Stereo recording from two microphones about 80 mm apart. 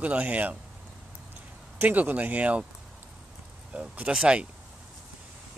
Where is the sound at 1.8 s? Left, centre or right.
Right.